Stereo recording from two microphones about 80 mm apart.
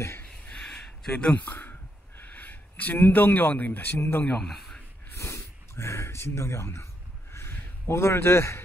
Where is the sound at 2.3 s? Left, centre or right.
Left.